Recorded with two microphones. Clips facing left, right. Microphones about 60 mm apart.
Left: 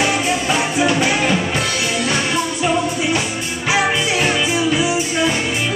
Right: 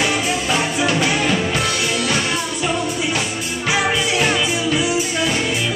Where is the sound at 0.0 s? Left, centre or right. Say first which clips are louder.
Left 2 dB; centre.